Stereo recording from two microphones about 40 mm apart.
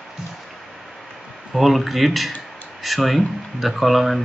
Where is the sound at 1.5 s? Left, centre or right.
Centre.